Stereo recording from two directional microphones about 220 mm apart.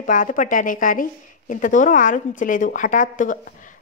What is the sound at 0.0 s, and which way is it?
A woman's voice, 35° left (ahead or behind).